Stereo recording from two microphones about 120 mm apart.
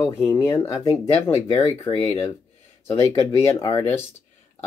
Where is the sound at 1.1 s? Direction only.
50° left (ahead or behind).